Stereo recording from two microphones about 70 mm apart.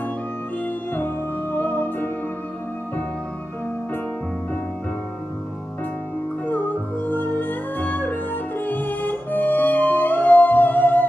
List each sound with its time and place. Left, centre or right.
0.9 s music: left
6.4 s music: left